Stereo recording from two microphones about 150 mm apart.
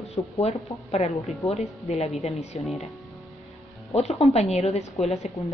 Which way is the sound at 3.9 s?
45° left (ahead or behind).